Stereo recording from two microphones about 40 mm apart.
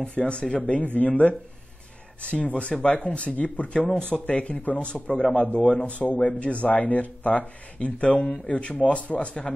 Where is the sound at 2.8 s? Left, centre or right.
Left.